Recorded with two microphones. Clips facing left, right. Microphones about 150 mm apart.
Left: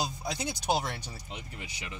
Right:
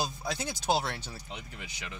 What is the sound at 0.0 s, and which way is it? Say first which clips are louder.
Speech: even; 15° left (ahead or behind).